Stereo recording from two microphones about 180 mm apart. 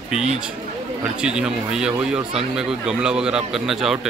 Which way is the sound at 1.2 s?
5° right (ahead or behind).